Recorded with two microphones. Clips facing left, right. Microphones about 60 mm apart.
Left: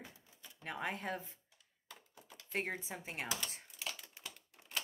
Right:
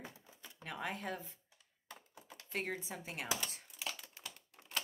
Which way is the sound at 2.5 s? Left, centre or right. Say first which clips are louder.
Left 1 dB; left.